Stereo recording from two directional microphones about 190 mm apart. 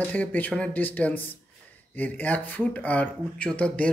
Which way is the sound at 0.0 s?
10° left (ahead or behind).